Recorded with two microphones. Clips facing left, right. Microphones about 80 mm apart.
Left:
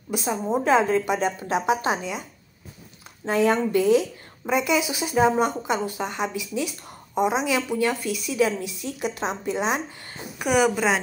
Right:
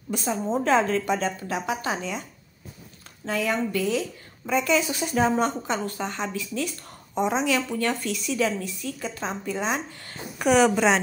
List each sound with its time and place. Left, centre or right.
0.1 s speech: centre
1.4 s speech: left
1.9 s speech: centre
3.3 s speech: left
4.5 s speech: centre